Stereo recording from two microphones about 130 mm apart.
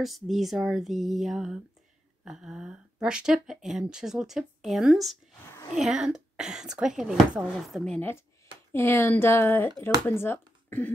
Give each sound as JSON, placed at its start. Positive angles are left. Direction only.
{"t": 0.0, "sound": "speech", "side_deg": 0}
{"t": 8.7, "sound": "speech", "side_deg": 20}